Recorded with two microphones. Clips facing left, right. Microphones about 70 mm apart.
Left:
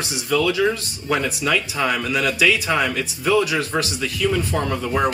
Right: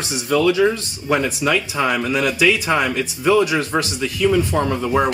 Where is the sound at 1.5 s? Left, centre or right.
Centre.